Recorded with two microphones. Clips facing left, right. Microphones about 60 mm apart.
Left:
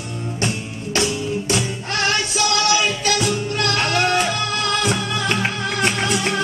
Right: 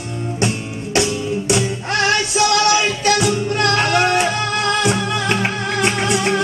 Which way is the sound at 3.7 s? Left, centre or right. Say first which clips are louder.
Right 2 dB; right.